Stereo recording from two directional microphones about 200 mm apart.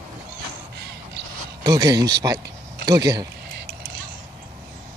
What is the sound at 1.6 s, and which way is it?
Speech, 20° right (ahead or behind).